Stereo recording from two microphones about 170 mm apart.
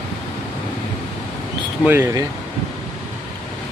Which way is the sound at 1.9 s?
15° right (ahead or behind).